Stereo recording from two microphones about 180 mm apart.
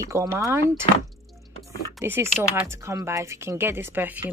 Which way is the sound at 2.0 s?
15° right (ahead or behind).